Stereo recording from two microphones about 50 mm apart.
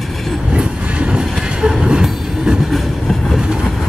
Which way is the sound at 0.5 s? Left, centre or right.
Right.